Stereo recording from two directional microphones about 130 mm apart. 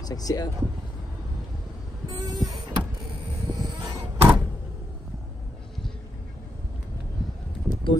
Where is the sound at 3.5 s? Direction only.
30° right (ahead or behind).